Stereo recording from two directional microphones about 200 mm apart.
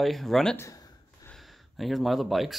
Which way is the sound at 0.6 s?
15° left (ahead or behind).